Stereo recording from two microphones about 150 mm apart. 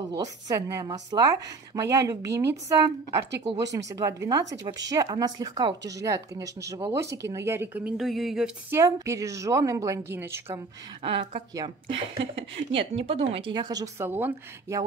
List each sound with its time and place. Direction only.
0.1 s a woman's voice: 25° right (ahead or behind)
8.0 s a sound: centre (ahead or behind)
8.6 s a woman's voice: 20° right (ahead or behind)
11.0 s speech: 35° right (ahead or behind)
14.0 s speech: 15° right (ahead or behind)